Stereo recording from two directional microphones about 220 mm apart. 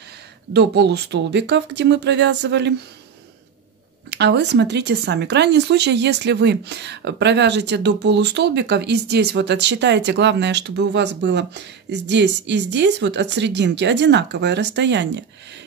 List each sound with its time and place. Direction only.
0.5 s speech: 50° right (ahead or behind)
4.1 s speech: 50° right (ahead or behind)